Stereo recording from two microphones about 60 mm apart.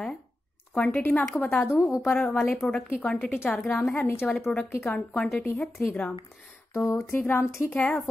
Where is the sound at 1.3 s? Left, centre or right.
Left.